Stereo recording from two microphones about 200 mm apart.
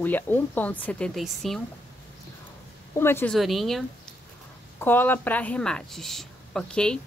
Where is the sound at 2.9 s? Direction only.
10° left (ahead or behind).